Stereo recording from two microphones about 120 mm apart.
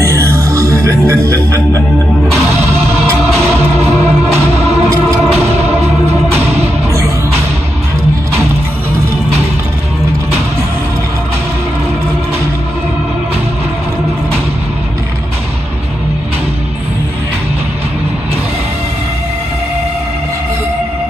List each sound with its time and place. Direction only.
0.0 s music: 25° right (ahead or behind)
2.5 s music: 60° right (ahead or behind)
4.8 s music: 25° right (ahead or behind)
5.3 s music: 60° right (ahead or behind)
6.3 s music: 20° right (ahead or behind)